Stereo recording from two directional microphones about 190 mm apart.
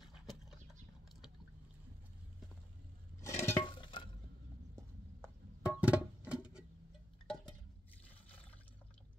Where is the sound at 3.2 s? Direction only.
15° left (ahead or behind).